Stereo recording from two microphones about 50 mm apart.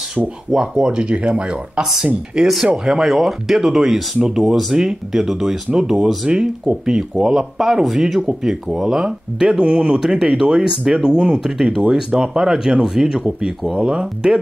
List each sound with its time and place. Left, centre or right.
0.5 s speech: centre